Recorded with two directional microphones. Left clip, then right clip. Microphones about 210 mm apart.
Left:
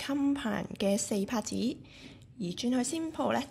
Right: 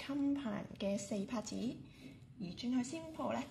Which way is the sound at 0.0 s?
25° left (ahead or behind).